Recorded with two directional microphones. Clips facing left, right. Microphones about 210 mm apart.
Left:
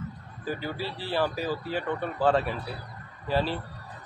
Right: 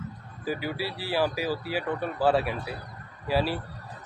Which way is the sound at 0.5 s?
10° right (ahead or behind).